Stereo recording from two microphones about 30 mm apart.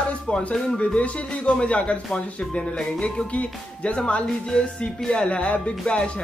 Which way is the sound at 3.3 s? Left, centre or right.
Left.